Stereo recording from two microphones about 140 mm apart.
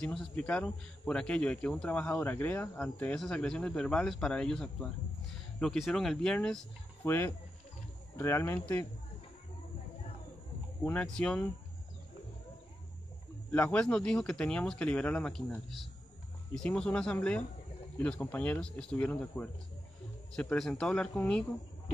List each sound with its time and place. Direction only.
0.0 s a man's voice: 5° left (ahead or behind)
7.1 s speech: 15° left (ahead or behind)
10.8 s speech: 10° left (ahead or behind)
13.5 s a man's voice: 10° left (ahead or behind)